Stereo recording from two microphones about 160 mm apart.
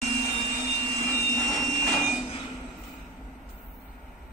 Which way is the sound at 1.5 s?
Centre (ahead or behind).